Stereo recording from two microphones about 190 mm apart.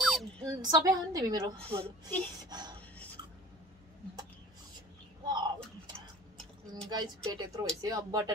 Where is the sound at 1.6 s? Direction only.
30° right (ahead or behind).